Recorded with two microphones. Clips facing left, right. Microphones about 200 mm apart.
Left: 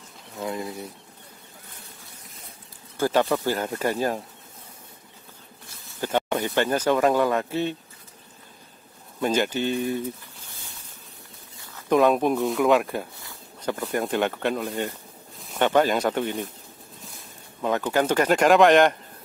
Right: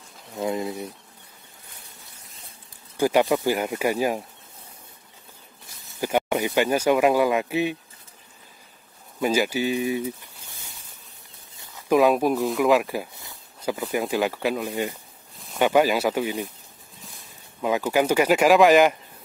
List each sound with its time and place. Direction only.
0.4 s speech: 20° right (ahead or behind)
3.0 s speech: 15° right (ahead or behind)
5.9 s speech: 10° right (ahead or behind)
9.2 s speech: 5° right (ahead or behind)
11.9 s speech: 5° right (ahead or behind)
14.7 s speech: 15° right (ahead or behind)
15.3 s speech: centre (ahead or behind)